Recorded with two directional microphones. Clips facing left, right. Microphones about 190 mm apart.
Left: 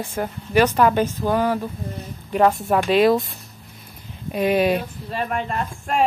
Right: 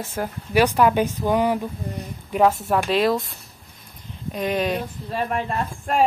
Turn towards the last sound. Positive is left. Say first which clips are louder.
# even
turn(degrees=0)  # may be behind; listen again after turning